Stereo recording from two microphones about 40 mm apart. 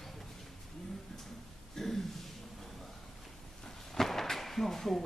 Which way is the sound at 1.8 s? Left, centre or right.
Centre.